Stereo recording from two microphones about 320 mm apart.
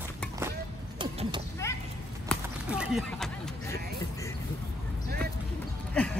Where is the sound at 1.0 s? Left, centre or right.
Centre.